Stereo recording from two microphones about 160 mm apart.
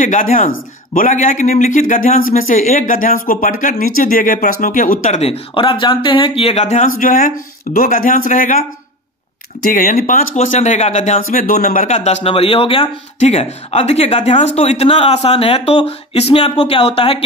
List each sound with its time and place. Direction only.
0.0 s speech: 55° left (ahead or behind)
9.6 s speech: 55° left (ahead or behind); by 17.2 s 35° left (ahead or behind)